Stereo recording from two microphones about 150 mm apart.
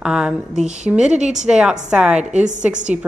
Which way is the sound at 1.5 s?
5° right (ahead or behind).